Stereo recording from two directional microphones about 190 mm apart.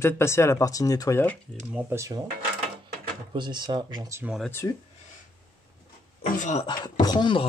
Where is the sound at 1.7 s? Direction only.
15° right (ahead or behind).